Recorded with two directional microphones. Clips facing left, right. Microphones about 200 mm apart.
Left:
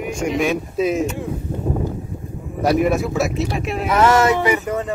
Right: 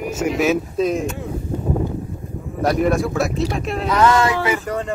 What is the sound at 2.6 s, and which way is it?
A man's voice, centre (ahead or behind).